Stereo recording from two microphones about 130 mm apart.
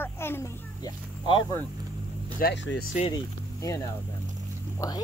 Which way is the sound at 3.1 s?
25° left (ahead or behind).